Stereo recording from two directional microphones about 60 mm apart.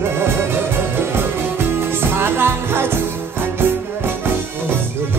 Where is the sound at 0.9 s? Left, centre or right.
Right.